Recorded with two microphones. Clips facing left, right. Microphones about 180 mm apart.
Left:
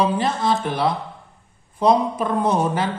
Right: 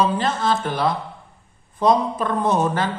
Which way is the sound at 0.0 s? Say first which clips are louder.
Even; 15° left (ahead or behind).